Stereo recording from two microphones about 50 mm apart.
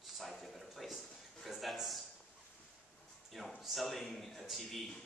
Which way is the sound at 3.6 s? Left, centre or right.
Centre.